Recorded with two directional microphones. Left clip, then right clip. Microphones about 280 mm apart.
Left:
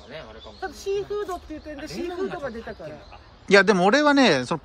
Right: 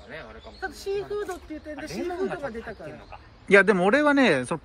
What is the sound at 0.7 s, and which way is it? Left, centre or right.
Speech, left.